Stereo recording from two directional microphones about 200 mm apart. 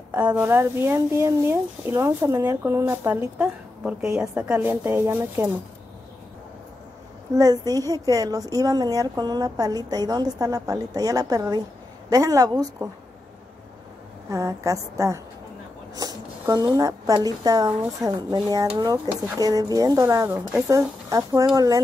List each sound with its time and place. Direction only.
0.1 s a woman's voice: 10° right (ahead or behind)
7.3 s a woman's voice: 20° right (ahead or behind)
14.3 s a woman's voice: 15° right (ahead or behind)